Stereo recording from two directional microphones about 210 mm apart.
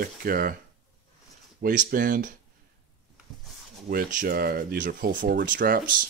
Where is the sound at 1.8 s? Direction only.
40° right (ahead or behind).